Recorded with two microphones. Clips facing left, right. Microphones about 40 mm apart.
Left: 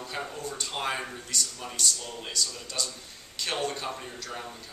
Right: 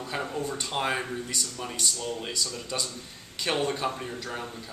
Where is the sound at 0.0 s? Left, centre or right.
Centre.